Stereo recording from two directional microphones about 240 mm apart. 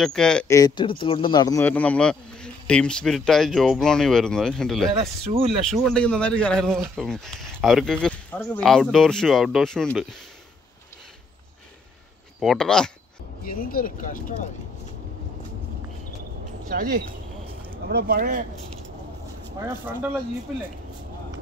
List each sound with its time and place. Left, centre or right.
0.0 s speech: centre
0.6 s speech: centre
5.2 s speech: right
5.7 s speech: centre
12.4 s speech: centre
13.4 s speech: left
16.6 s speech: right